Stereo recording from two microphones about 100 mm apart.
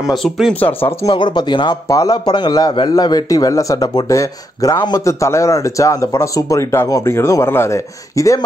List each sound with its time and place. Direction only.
0.2 s speech: centre (ahead or behind)
1.1 s speech: 50° left (ahead or behind)
1.9 s speech: 35° left (ahead or behind)
5.0 s speech: 30° left (ahead or behind)